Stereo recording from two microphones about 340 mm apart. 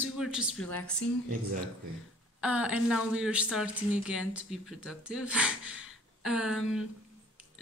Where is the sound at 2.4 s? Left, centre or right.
Centre.